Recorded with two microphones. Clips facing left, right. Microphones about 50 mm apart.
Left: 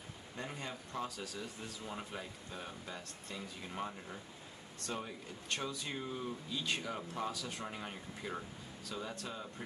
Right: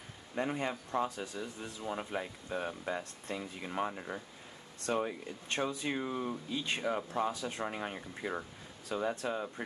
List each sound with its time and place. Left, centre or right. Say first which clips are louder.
0.4 s speech: right 10 dB; right
4.8 s speech: right 9 dB; right
5.5 s speech: right 6 dB; right